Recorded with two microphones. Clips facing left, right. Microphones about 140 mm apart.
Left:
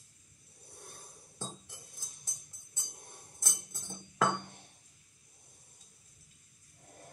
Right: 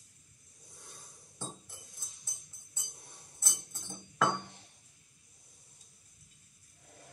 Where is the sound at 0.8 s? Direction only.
60° left (ahead or behind).